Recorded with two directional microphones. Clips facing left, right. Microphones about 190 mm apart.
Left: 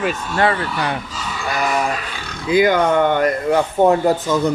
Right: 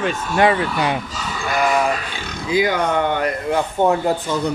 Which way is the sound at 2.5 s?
55° left (ahead or behind).